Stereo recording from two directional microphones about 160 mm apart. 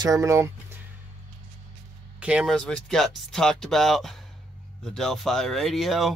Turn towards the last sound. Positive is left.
turn(degrees=0)  # may be behind; listen again after turning